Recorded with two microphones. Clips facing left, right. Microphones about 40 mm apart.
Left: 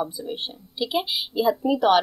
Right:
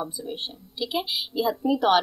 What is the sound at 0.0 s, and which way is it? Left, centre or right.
Speech, centre.